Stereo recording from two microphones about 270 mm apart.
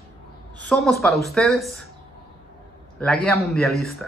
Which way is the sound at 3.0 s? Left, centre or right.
Centre.